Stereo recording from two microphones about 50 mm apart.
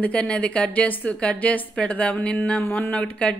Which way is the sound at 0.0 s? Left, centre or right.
Left.